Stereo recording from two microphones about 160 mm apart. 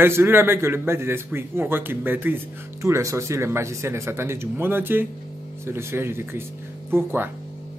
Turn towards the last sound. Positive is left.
turn(degrees=-15)  # may be behind; listen again after turning